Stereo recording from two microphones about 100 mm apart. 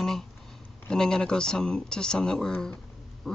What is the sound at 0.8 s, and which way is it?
Speech, 5° left (ahead or behind).